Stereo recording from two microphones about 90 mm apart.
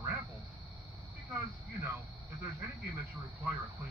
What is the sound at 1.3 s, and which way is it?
Speech, 30° right (ahead or behind).